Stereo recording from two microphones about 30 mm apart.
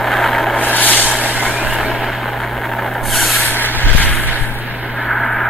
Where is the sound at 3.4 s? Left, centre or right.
Left.